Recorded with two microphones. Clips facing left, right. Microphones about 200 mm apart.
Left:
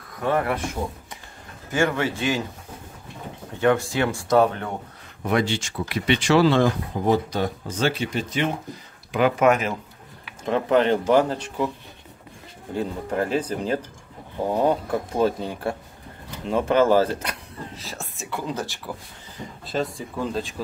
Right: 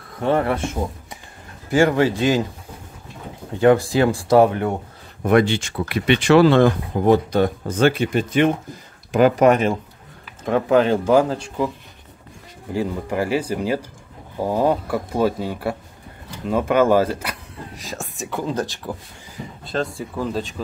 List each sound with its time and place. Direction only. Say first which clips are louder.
0.2 s speech: right 4 dB; 30° right (ahead or behind)
1.8 s speech: right 6 dB; 35° right (ahead or behind)
3.6 s speech: right 6 dB; 35° right (ahead or behind)
5.2 s speech: right 6 dB; 55° right (ahead or behind)
9.1 s speech: right 4 dB; 40° right (ahead or behind)
10.5 s speech: right 3 dB; 10° right (ahead or behind)
12.7 s speech: right 3 dB; 10° right (ahead or behind)
19.6 s speech: right 2 dB; centre (ahead or behind)